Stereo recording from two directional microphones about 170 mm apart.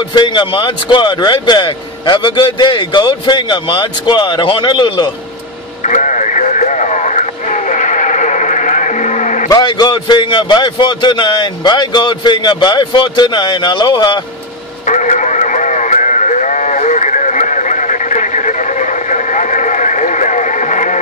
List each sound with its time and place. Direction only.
0.1 s a man's voice: 25° left (ahead or behind)
5.9 s radio: 45° left (ahead or behind)
7.7 s music: 45° left (ahead or behind)
9.5 s a man's voice: 25° left (ahead or behind)
14.9 s radio: 45° left (ahead or behind)